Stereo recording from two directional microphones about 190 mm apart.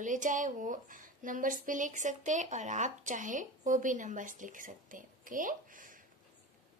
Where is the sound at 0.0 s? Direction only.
40° right (ahead or behind).